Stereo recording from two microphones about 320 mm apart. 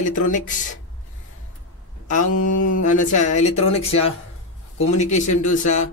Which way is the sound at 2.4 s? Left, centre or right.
Left.